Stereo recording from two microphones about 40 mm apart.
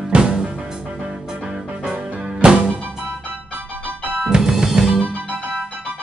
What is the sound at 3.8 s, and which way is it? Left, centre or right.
Music, right.